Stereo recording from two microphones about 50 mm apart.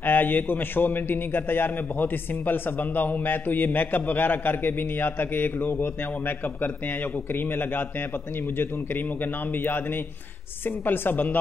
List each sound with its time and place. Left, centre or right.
0.0 s a man's voice: left
9.2 s speech: left
10.9 s a man's voice: left